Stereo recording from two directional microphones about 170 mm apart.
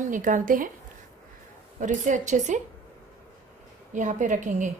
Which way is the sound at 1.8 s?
50° right (ahead or behind).